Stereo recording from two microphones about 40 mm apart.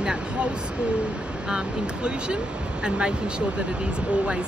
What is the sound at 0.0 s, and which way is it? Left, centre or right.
Speech, centre.